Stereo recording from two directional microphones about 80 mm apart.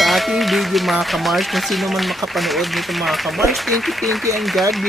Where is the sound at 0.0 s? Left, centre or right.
Centre.